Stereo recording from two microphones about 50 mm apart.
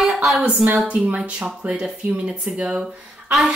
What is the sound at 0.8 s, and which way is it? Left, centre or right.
A woman's voice, right.